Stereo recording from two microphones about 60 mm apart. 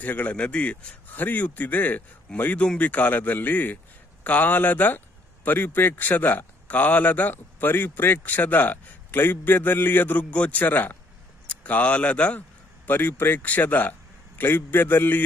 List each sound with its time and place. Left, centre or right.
0.0 s a man's voice: left